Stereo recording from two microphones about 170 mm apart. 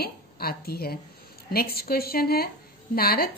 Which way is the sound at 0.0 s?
65° left (ahead or behind).